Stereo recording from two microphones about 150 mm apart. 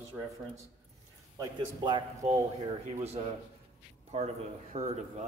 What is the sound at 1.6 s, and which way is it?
Speech, 30° right (ahead or behind).